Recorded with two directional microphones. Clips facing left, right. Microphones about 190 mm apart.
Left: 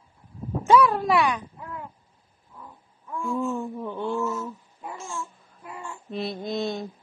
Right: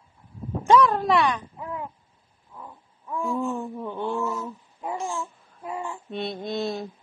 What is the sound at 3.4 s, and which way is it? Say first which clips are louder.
Speech: even; 15° right (ahead or behind).